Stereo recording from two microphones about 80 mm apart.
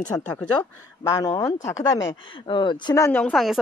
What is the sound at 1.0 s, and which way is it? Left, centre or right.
Speech, left.